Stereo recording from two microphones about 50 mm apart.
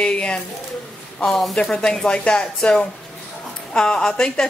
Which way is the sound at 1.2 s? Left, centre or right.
Centre.